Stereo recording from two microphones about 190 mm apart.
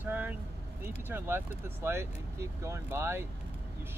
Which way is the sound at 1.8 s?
15° right (ahead or behind).